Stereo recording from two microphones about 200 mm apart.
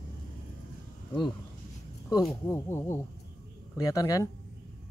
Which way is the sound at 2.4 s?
10° left (ahead or behind).